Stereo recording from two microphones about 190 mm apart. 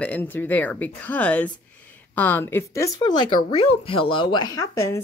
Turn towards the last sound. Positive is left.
turn(degrees=15)  # may be behind; listen again after turning